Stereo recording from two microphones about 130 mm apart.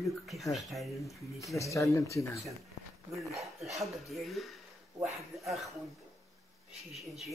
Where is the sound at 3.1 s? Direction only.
Centre (ahead or behind).